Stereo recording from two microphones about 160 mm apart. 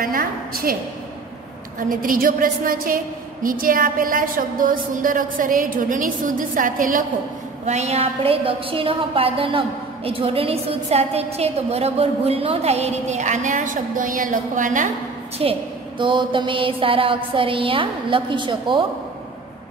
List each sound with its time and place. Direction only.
0.0 s a sound: 65° right (ahead or behind)
1.8 s a woman's voice: 60° right (ahead or behind)
7.6 s a woman's voice: 45° right (ahead or behind)
15.4 s a woman's voice: 35° right (ahead or behind)